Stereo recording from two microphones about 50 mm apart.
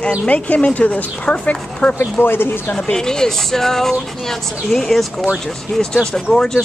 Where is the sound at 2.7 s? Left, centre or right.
Centre.